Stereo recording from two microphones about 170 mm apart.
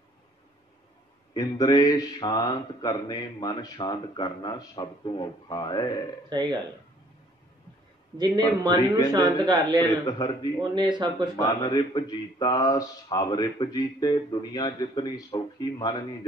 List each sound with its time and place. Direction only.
1.3 s mantra: 20° left (ahead or behind)
6.2 s a man's voice: 25° right (ahead or behind)
8.2 s a man's voice: 25° right (ahead or behind)
10.0 s mantra: 25° left (ahead or behind)
10.6 s a man's voice: 25° right (ahead or behind)
11.3 s mantra: 20° left (ahead or behind)